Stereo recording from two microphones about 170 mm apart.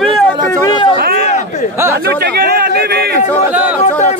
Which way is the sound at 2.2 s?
70° right (ahead or behind).